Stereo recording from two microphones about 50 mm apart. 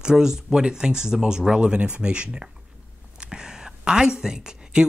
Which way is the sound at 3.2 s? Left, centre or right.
Centre.